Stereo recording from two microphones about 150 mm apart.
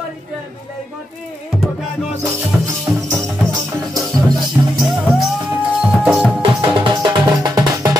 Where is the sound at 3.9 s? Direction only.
25° right (ahead or behind).